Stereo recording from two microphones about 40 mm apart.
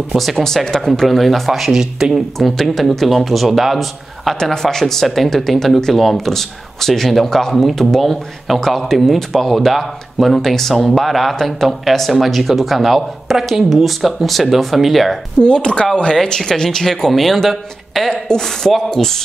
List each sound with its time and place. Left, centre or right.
0.1 s speech: centre
0.7 s speech: centre
4.4 s speech: centre
15.4 s speech: left
16.2 s speech: centre
16.8 s speech: centre